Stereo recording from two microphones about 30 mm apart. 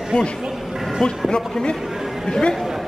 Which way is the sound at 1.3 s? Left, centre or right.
Left.